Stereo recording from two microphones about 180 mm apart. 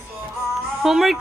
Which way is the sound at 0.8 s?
Centre (ahead or behind).